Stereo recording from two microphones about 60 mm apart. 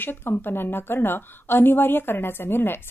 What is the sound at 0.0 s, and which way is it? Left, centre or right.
A woman's voice, left.